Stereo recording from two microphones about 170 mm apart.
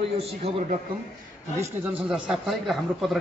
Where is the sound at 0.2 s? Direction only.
35° right (ahead or behind).